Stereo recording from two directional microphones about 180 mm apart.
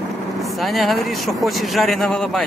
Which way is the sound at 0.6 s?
Centre (ahead or behind).